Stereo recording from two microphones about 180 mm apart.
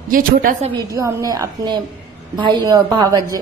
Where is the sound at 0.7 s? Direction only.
20° right (ahead or behind).